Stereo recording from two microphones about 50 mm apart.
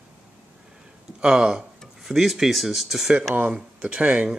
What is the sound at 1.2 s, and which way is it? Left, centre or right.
Speech, centre.